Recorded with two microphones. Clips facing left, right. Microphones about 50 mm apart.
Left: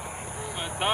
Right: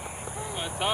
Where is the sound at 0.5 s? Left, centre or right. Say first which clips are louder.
Left 1 dB; left.